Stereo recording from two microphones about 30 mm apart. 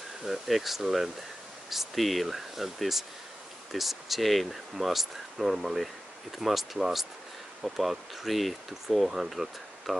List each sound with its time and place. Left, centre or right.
0.2 s speech: centre
2.0 s speech: centre
9.0 s speech: centre
9.3 s speech: centre